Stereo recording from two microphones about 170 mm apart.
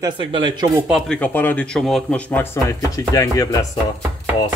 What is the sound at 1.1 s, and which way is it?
Chopping, 10° left (ahead or behind).